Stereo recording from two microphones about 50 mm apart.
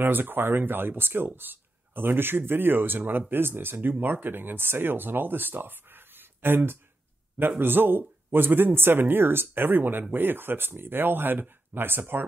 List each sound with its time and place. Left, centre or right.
0.0 s speech: right